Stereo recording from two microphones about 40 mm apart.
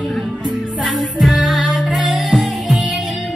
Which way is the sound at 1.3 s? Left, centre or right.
Centre.